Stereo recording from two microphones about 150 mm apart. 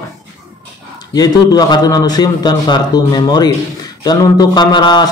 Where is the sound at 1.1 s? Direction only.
25° left (ahead or behind).